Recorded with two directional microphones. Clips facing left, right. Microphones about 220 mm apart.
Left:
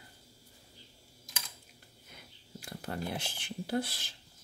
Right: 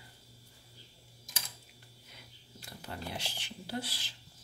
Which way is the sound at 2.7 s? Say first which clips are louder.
Left 5 dB; 50° left (ahead or behind).